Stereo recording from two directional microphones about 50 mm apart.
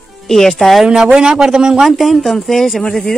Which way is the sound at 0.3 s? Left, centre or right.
Centre.